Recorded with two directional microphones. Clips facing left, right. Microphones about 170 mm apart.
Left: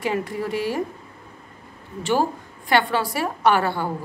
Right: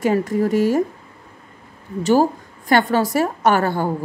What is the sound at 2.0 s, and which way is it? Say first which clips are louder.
A woman's voice: right 6 dB; 40° right (ahead or behind).